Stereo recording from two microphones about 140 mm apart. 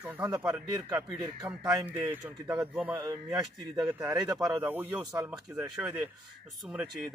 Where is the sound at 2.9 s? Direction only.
25° right (ahead or behind).